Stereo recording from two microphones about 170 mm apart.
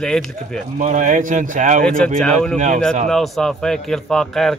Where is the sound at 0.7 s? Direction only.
45° right (ahead or behind).